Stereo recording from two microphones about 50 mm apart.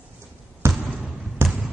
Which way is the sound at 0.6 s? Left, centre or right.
Right.